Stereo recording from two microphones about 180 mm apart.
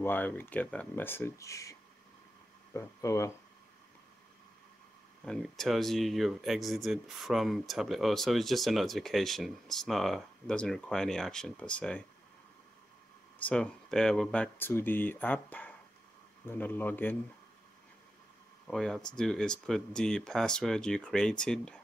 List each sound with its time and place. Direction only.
0.0 s speech: 10° left (ahead or behind)
5.2 s speech: 5° left (ahead or behind)
13.4 s speech: 5° left (ahead or behind)
18.7 s speech: 5° left (ahead or behind)